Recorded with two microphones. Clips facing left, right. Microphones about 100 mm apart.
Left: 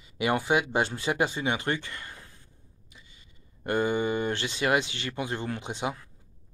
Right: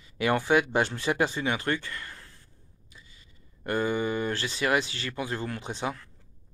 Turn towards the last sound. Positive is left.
turn(degrees=15)  # may be behind; listen again after turning